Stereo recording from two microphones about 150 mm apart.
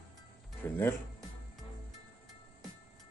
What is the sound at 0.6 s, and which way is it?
Speech, 15° left (ahead or behind).